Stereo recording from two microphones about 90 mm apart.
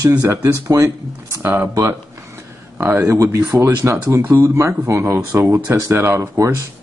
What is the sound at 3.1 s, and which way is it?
Speech, 30° right (ahead or behind).